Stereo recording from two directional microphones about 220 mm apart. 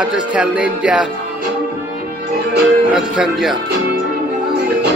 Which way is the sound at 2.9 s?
Centre (ahead or behind).